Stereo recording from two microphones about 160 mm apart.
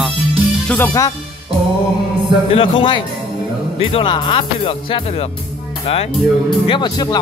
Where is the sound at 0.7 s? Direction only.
15° left (ahead or behind).